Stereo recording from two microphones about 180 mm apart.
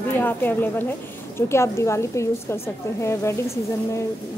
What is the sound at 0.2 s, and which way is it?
Speech, 10° left (ahead or behind).